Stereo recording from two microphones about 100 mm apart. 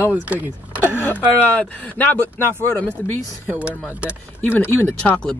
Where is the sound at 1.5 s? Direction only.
15° left (ahead or behind).